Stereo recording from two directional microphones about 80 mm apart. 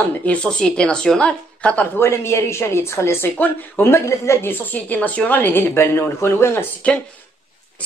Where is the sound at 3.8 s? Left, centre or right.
Left.